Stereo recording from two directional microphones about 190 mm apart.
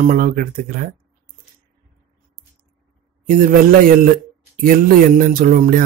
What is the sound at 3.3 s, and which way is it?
Speech, 50° right (ahead or behind).